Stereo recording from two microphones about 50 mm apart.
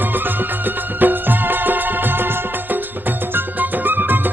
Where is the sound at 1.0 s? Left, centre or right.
Right.